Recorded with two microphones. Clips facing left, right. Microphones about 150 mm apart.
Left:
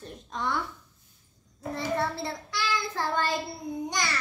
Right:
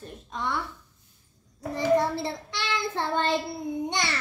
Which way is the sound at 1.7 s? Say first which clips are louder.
Right 6 dB; 15° right (ahead or behind).